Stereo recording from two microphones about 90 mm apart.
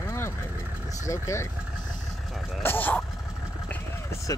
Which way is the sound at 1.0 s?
35° left (ahead or behind).